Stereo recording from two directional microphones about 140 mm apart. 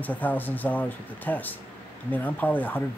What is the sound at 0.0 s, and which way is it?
Speech, 10° left (ahead or behind).